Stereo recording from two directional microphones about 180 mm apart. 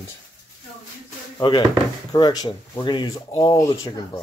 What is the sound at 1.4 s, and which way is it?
Speech, 25° left (ahead or behind).